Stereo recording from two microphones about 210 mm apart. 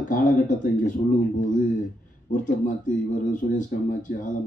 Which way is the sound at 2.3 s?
40° left (ahead or behind).